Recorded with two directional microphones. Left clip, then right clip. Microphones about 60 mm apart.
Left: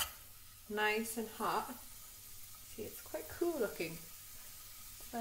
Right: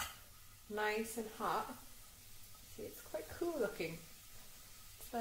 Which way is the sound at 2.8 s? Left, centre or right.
Centre.